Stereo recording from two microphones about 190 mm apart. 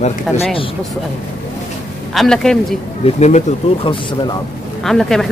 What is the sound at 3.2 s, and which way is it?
Speech, 35° left (ahead or behind).